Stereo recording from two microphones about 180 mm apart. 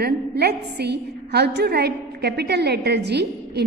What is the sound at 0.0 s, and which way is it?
A woman's voice, 65° right (ahead or behind).